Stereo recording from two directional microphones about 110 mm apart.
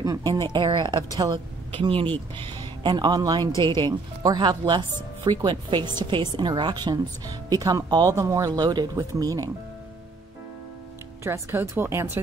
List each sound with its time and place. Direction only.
0.0 s a woman's voice: 30° right (ahead or behind)
11.2 s speech: 25° right (ahead or behind)